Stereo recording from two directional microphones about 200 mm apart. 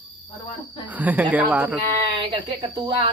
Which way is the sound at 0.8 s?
10° right (ahead or behind).